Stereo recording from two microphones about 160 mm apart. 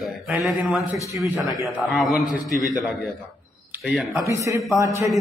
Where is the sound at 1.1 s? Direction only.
20° right (ahead or behind).